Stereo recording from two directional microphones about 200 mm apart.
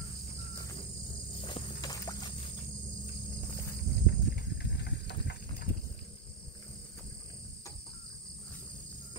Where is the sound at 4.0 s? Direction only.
55° left (ahead or behind).